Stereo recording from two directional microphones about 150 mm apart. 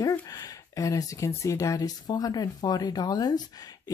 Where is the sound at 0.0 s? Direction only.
25° left (ahead or behind).